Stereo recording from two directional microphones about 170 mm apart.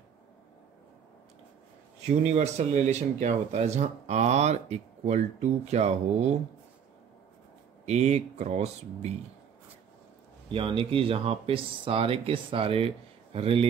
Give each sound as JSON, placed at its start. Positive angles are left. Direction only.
{"t": 2.0, "sound": "speech", "side_deg": -40}
{"t": 7.8, "sound": "speech", "side_deg": -40}
{"t": 10.5, "sound": "speech", "side_deg": -30}